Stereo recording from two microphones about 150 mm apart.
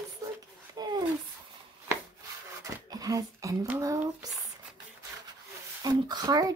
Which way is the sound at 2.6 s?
25° right (ahead or behind).